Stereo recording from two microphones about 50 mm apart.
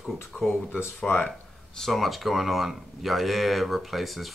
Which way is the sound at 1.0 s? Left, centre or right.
Centre.